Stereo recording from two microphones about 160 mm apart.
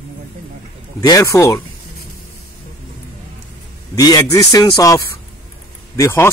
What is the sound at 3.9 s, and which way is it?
Speech, 25° left (ahead or behind).